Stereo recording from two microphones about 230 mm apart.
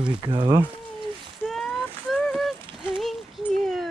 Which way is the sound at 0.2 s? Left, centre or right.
Right.